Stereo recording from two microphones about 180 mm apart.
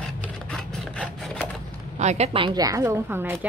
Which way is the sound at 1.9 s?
40° right (ahead or behind).